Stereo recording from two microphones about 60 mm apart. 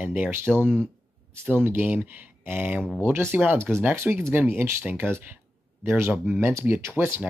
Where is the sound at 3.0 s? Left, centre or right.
Right.